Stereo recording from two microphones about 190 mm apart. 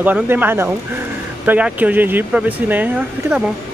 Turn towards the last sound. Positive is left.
turn(degrees=-10)  # may be behind; listen again after turning